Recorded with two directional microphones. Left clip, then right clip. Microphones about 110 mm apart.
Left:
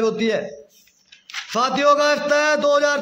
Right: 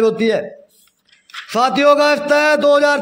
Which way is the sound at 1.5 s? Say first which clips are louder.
Right 4 dB; 35° right (ahead or behind).